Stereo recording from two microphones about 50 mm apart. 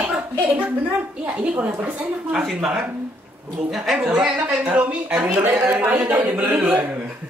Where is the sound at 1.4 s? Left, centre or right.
Right.